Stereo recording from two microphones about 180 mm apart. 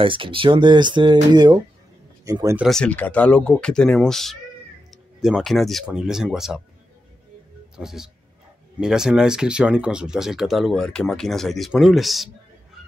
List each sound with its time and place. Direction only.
0.0 s speech: 30° right (ahead or behind)
2.6 s speech: 5° left (ahead or behind)
7.7 s speech: 5° right (ahead or behind)